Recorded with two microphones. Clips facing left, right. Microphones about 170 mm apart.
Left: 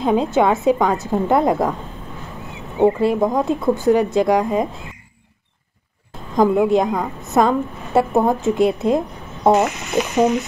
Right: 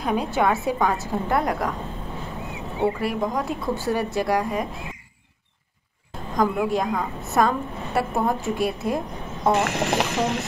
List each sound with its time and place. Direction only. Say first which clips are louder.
0.0 s a woman's voice: left 6 dB; 25° left (ahead or behind)
3.0 s a woman's voice: left 8 dB; 25° left (ahead or behind)
6.3 s a woman's voice: left 7 dB; 25° left (ahead or behind)
9.7 s speech: left 1 dB; 70° right (ahead or behind)